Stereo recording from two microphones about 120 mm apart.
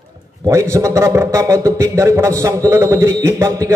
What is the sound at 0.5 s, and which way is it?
A man's voice, 25° right (ahead or behind).